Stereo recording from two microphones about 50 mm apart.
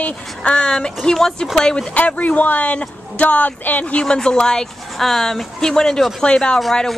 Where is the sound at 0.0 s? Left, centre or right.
Left.